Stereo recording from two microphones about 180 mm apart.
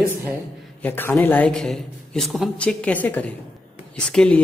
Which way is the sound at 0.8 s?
10° left (ahead or behind).